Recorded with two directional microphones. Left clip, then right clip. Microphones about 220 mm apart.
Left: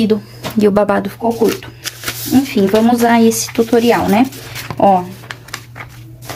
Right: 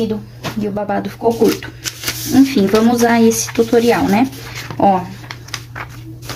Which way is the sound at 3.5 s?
15° left (ahead or behind).